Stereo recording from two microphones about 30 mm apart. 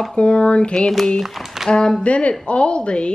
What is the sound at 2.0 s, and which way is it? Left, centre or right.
Speech, left.